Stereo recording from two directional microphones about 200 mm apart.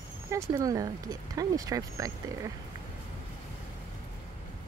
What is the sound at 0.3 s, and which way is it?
Speech, 15° right (ahead or behind).